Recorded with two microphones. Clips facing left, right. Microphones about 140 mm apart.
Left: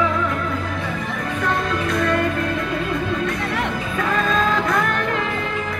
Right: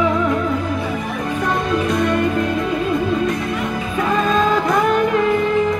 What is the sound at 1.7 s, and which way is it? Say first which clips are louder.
Music: right 3 dB; 20° right (ahead or behind).